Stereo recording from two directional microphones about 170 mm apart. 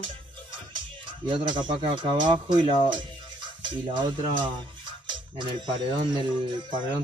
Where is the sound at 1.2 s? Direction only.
30° right (ahead or behind).